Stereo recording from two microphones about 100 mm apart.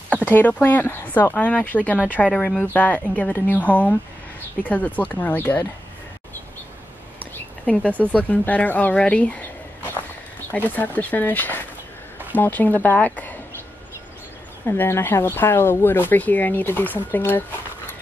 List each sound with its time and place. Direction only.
0.1 s speech: 15° left (ahead or behind)
7.6 s speech: 10° left (ahead or behind)
10.5 s speech: 15° left (ahead or behind)
14.7 s speech: 25° left (ahead or behind)